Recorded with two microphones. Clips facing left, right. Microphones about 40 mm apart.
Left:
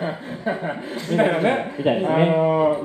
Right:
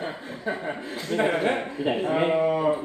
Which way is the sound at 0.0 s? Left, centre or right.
Centre.